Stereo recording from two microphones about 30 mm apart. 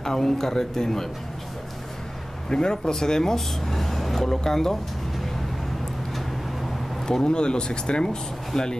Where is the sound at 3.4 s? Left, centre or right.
Centre.